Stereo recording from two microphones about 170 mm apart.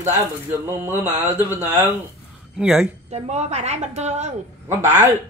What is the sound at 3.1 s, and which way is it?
A woman's voice, 40° right (ahead or behind).